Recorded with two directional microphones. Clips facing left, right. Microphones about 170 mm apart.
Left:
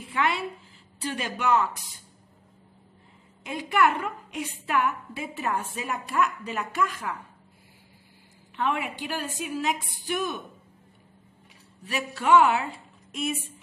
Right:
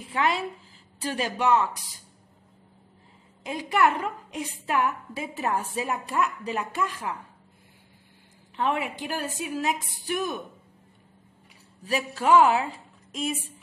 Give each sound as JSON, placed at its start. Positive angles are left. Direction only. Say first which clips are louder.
{"t": 0.1, "sound": "a woman's voice", "louder": "right 1 dB", "side_deg": -35}
{"t": 3.4, "sound": "a woman's voice", "louder": "even", "side_deg": -35}
{"t": 8.5, "sound": "a woman's voice", "louder": "right 1 dB", "side_deg": -35}
{"t": 11.8, "sound": "a woman's voice", "louder": "right 3 dB", "side_deg": -35}